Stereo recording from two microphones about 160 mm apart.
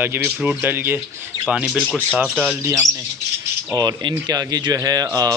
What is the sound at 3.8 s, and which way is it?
Speech, 25° right (ahead or behind).